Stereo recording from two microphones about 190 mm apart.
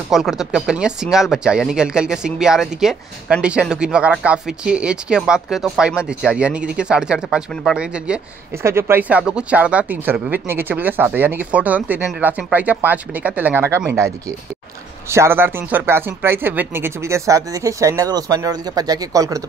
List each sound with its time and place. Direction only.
0.1 s speech: centre (ahead or behind); by 19.4 s 20° right (ahead or behind)